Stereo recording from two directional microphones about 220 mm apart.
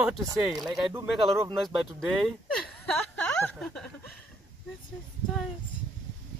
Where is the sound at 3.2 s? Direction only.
5° left (ahead or behind).